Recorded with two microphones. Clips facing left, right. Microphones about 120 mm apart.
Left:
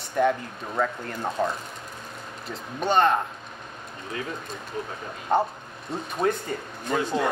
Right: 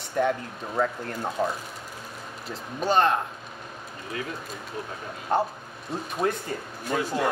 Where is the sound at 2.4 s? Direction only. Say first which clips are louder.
Even; centre (ahead or behind).